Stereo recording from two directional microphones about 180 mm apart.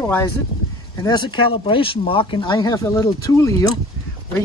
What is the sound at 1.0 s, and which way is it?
Speech, 25° left (ahead or behind).